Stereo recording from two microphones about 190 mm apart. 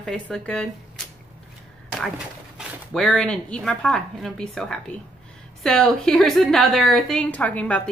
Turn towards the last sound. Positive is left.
turn(degrees=5)  # may be behind; listen again after turning